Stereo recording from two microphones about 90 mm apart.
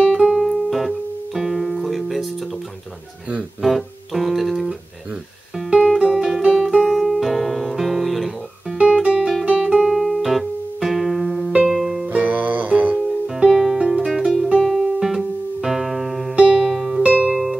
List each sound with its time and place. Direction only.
0.0 s music: 5° right (ahead or behind)
3.6 s music: centre (ahead or behind)
9.3 s guitar: 10° right (ahead or behind)
12.1 s music: 15° right (ahead or behind)
13.3 s music: 5° right (ahead or behind)